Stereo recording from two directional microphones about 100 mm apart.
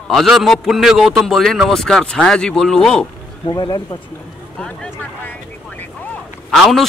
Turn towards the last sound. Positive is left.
turn(degrees=0)  # may be behind; listen again after turning